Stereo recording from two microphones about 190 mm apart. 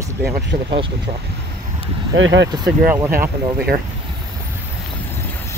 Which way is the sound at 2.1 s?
80° right.